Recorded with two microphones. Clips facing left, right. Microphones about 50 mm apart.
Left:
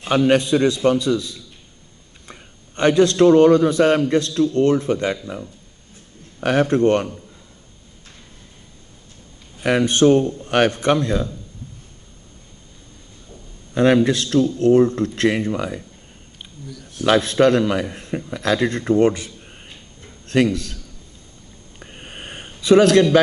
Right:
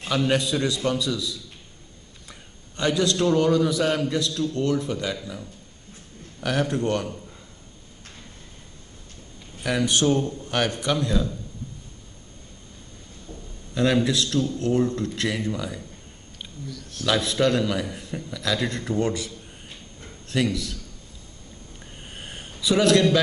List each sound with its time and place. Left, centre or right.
0.3 s a man's voice: left
6.4 s a man's voice: left
9.6 s a man's voice: left
13.7 s a man's voice: left
16.6 s speech: centre
17.0 s a man's voice: left
21.7 s a sound: left